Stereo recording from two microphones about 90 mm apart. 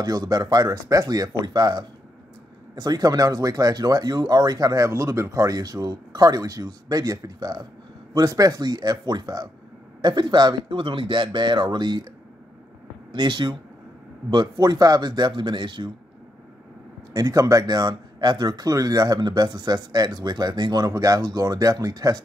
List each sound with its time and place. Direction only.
0.0 s speech: 45° right (ahead or behind)
13.1 s speech: 60° right (ahead or behind)
17.1 s speech: 40° right (ahead or behind)